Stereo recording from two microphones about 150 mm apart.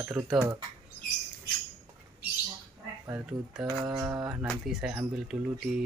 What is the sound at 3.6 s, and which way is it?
Mantra, 25° right (ahead or behind).